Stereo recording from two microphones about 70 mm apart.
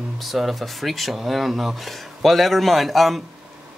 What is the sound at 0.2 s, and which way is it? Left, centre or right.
Speech, centre.